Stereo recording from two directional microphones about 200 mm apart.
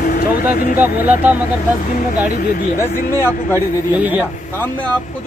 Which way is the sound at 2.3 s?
45° left (ahead or behind).